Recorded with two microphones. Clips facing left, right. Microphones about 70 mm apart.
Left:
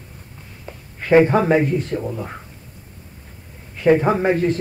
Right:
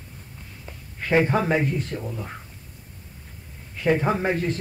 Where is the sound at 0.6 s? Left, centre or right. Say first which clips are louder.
Left 7 dB; left.